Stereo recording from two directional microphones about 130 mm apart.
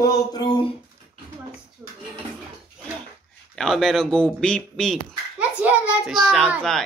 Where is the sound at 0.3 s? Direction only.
35° left (ahead or behind).